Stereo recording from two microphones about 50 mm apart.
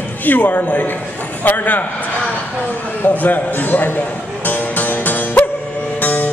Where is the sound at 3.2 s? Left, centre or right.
Left.